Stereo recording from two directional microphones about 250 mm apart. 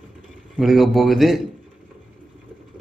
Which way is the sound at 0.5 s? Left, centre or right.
Centre.